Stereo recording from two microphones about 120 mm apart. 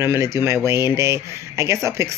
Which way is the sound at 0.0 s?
20° right (ahead or behind).